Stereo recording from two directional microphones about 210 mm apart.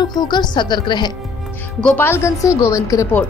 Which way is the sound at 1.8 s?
10° left (ahead or behind).